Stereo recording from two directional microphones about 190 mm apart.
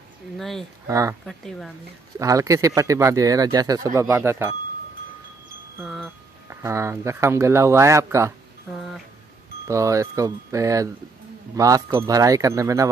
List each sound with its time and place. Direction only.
0.4 s speech: centre (ahead or behind)
0.8 s speech: 15° right (ahead or behind)
1.2 s speech: centre (ahead or behind)
2.1 s speech: 15° right (ahead or behind)
5.9 s wind chime: 5° left (ahead or behind)
6.5 s speech: 15° right (ahead or behind)
8.7 s speech: centre (ahead or behind)
9.7 s speech: 15° right (ahead or behind)